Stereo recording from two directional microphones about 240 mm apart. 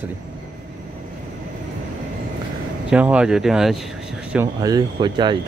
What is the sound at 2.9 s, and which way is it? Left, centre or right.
Speech, centre.